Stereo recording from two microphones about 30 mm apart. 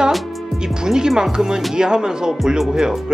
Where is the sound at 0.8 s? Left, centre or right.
Right.